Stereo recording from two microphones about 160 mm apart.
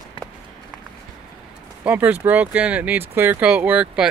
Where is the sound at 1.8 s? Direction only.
10° right (ahead or behind).